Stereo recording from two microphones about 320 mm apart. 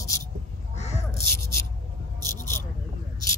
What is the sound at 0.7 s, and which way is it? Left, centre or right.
Crow, left.